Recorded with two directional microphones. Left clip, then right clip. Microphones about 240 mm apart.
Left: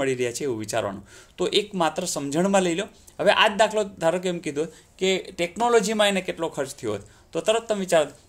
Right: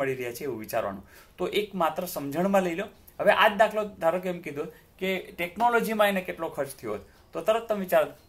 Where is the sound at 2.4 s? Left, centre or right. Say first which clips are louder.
Left 2 dB; left.